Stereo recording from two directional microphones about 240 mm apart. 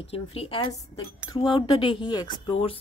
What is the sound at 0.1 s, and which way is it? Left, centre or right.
Speech, left.